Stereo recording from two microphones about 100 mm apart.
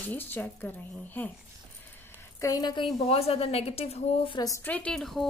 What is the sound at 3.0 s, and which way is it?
Speech, 85° left.